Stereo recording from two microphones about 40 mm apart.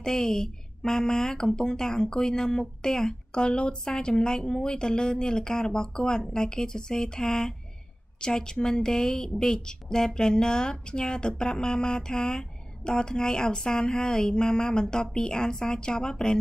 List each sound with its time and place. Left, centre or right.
0.0 s a woman's voice: centre